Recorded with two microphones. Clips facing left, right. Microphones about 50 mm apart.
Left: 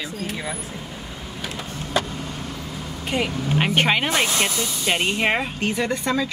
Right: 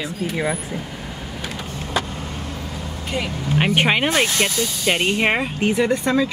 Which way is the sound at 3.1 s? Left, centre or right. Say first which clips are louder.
Left 2 dB; left.